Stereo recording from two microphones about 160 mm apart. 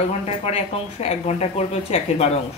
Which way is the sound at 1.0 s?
40° left (ahead or behind).